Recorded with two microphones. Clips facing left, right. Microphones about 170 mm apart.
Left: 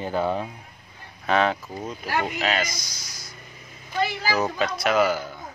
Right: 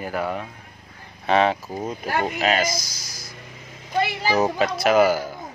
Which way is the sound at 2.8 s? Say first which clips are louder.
Right 3 dB; 10° right (ahead or behind).